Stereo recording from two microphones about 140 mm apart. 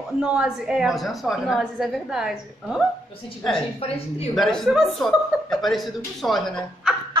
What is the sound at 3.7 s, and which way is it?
Speech, 45° left (ahead or behind).